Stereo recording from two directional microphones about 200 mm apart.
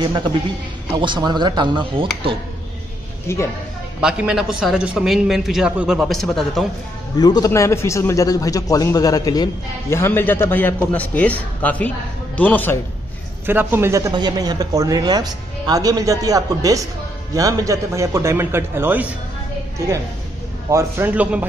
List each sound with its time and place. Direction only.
0.9 s speech: 25° right (ahead or behind)
3.3 s a man's voice: 15° left (ahead or behind)
4.0 s a man's voice: 5° right (ahead or behind)
7.2 s a man's voice: 20° left (ahead or behind)
13.5 s speech: 10° right (ahead or behind)
20.7 s speech: 10° right (ahead or behind)